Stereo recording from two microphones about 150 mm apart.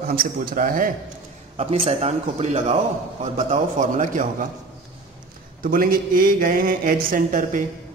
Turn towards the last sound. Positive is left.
turn(degrees=-65)  # may be behind; listen again after turning